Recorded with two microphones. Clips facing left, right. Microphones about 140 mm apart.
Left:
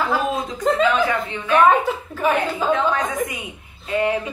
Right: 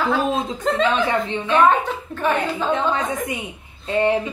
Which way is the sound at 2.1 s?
10° left (ahead or behind).